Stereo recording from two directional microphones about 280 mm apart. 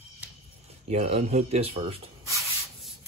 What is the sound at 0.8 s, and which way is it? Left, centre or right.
Speech, right.